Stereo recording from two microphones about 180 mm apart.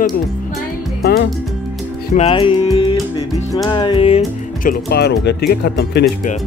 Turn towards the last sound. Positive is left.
turn(degrees=65)  # may be behind; listen again after turning